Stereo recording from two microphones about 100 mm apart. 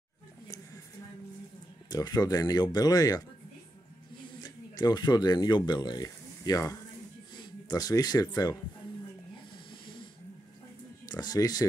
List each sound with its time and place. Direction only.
1.9 s speech: 40° left (ahead or behind)
4.4 s speech: 40° left (ahead or behind)
9.7 s snoring: 55° left (ahead or behind)
11.1 s speech: 40° left (ahead or behind)